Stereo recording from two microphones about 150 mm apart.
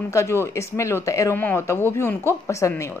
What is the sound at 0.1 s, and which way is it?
Speech, 20° left (ahead or behind).